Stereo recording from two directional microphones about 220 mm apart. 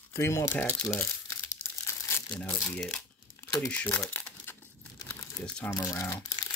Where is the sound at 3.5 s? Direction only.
5° left (ahead or behind).